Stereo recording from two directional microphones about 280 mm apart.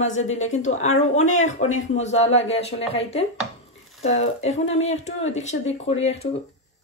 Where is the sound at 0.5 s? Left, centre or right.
Left.